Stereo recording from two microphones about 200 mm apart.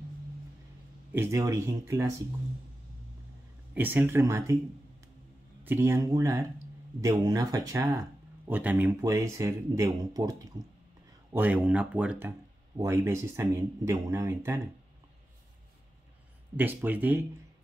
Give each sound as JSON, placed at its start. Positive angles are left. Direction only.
{"t": 1.1, "sound": "speech", "side_deg": -10}
{"t": 3.7, "sound": "speech", "side_deg": -10}
{"t": 5.6, "sound": "speech", "side_deg": -10}
{"t": 16.5, "sound": "speech", "side_deg": -10}